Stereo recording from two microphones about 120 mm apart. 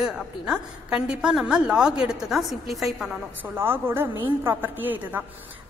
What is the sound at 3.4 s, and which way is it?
A woman's voice, 20° right (ahead or behind).